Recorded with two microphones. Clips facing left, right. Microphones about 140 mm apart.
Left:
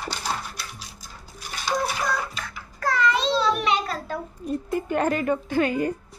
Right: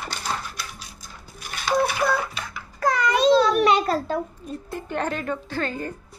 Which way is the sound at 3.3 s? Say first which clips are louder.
Right 5 dB; 45° right (ahead or behind).